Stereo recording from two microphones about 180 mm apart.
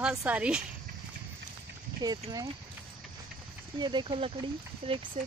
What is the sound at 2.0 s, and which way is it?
Speech, 20° right (ahead or behind).